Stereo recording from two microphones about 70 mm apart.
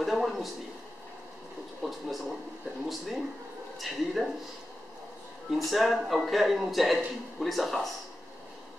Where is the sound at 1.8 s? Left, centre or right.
Centre.